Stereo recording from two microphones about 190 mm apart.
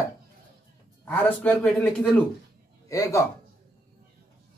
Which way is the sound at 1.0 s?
10° left (ahead or behind).